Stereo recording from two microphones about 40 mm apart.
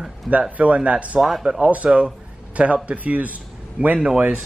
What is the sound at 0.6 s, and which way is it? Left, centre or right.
Speech, right.